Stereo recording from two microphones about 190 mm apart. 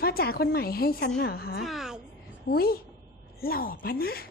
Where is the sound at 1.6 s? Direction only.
Centre (ahead or behind).